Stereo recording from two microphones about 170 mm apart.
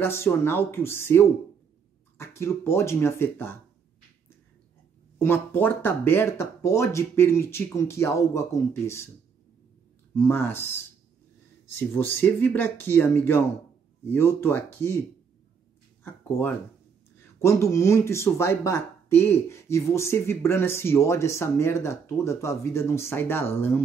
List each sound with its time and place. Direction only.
0.0 s speech: 15° left (ahead or behind)
5.2 s speech: 10° left (ahead or behind)
10.1 s speech: 15° left (ahead or behind)
16.0 s speech: 10° left (ahead or behind)